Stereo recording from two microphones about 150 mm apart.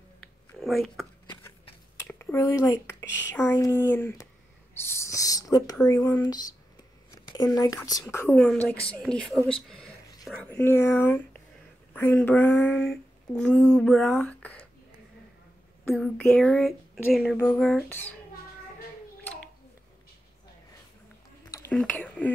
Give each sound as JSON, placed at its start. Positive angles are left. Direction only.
{"t": 0.2, "sound": "a sound", "side_deg": 0}
{"t": 2.0, "sound": "a sound", "side_deg": 15}
{"t": 3.0, "sound": "speech", "side_deg": 15}
{"t": 8.4, "sound": "speech", "side_deg": 5}
{"t": 10.5, "sound": "speech", "side_deg": 15}
{"t": 15.9, "sound": "speech", "side_deg": 5}
{"t": 21.7, "sound": "speech", "side_deg": 10}